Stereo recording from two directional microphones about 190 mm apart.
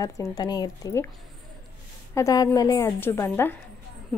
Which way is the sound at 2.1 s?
20° left (ahead or behind).